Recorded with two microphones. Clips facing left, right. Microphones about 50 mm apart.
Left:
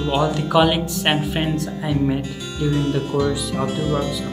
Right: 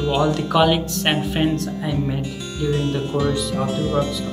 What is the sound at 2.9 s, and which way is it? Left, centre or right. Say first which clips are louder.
Speech: left 1 dB; centre.